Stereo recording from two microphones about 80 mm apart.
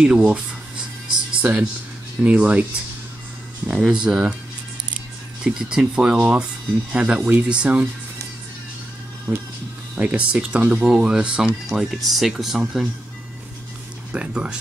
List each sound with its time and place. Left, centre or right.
0.0 s speech: centre
3.6 s speech: centre
5.4 s speech: centre
9.3 s music: centre
9.9 s speech: centre
14.1 s speech: centre